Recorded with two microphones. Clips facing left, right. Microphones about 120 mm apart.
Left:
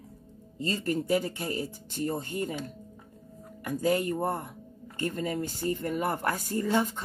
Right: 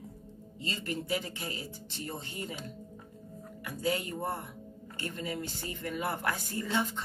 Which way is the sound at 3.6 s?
45° left (ahead or behind).